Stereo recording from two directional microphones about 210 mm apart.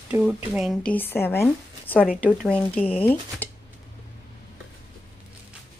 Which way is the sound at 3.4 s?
5° left (ahead or behind).